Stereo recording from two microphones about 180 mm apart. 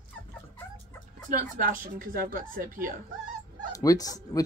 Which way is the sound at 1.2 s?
45° right (ahead or behind).